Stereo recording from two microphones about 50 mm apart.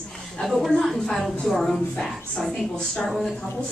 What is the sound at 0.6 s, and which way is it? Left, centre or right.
A woman's voice, centre.